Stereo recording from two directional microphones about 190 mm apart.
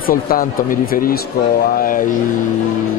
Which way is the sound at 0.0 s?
50° left (ahead or behind).